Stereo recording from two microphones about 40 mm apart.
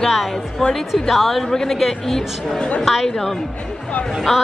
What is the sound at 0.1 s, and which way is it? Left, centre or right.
A woman's voice, centre.